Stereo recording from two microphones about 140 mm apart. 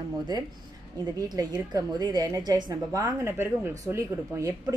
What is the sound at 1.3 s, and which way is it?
Speech, 30° right (ahead or behind).